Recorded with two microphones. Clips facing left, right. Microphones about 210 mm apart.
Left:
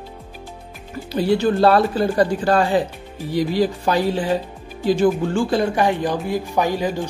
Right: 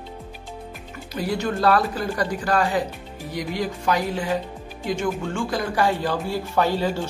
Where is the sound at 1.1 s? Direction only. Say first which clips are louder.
Left 7 dB; 30° left (ahead or behind).